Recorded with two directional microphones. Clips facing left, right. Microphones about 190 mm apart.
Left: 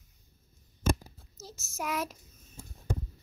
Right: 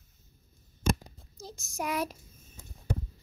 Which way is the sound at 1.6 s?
15° right (ahead or behind).